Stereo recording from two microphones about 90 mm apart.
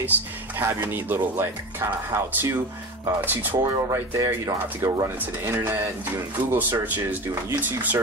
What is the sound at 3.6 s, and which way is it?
Speech, 35° right (ahead or behind).